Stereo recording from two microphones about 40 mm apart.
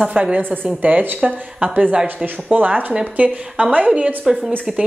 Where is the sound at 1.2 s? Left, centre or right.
Right.